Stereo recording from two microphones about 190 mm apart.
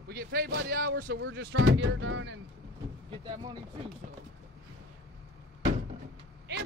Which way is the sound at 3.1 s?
25° right (ahead or behind).